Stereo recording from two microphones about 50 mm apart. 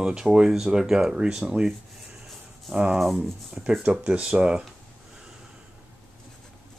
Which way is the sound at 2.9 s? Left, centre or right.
Centre.